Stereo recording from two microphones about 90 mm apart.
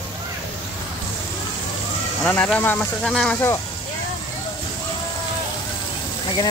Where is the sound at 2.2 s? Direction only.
15° left (ahead or behind).